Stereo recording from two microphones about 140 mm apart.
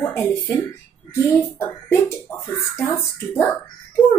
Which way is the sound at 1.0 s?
20° left (ahead or behind).